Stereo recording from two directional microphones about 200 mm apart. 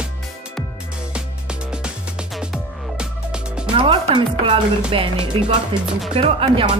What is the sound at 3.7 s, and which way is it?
Speech, 25° right (ahead or behind).